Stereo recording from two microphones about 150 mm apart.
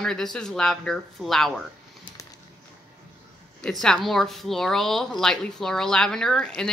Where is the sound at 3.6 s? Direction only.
5° left (ahead or behind).